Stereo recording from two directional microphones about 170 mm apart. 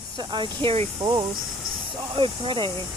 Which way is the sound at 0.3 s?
30° right (ahead or behind).